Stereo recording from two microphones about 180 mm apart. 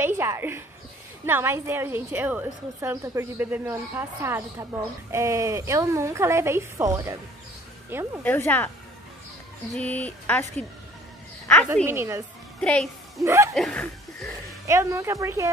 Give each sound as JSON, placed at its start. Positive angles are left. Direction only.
{"t": 0.0, "sound": "a sound", "side_deg": -15}
{"t": 1.2, "sound": "a woman's voice", "side_deg": -15}
{"t": 8.2, "sound": "a sound", "side_deg": 10}
{"t": 9.7, "sound": "a sound", "side_deg": 5}
{"t": 11.7, "sound": "a woman's voice", "side_deg": -15}
{"t": 12.5, "sound": "speech", "side_deg": 5}
{"t": 13.2, "sound": "a woman's voice", "side_deg": -15}
{"t": 13.6, "sound": "speech", "side_deg": 5}
{"t": 14.7, "sound": "a woman's voice", "side_deg": -15}